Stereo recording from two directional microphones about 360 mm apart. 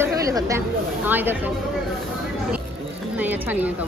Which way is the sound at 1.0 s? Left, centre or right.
Centre.